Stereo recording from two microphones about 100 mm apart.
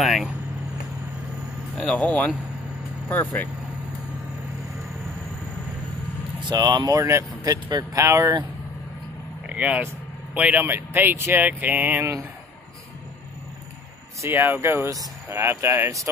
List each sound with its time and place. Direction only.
0.0 s vehicle: centre (ahead or behind)
1.9 s speech: 15° left (ahead or behind)
6.5 s speech: 45° right (ahead or behind)
7.0 s speech: 30° right (ahead or behind)
9.5 s speech: 10° right (ahead or behind)
14.2 s speech: 20° right (ahead or behind)